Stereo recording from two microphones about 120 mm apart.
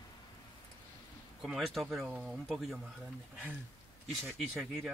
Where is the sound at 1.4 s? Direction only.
5° right (ahead or behind).